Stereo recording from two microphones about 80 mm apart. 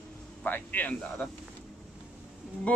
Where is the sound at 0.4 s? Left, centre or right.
Left.